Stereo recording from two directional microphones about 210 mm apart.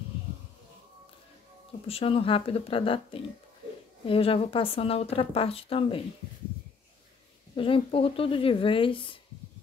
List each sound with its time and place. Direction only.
1.9 s speech: 25° left (ahead or behind)
7.5 s speech: 25° left (ahead or behind)